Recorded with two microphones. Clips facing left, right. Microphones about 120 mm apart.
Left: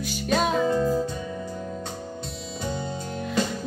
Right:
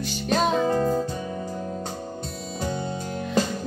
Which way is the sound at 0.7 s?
45° right (ahead or behind).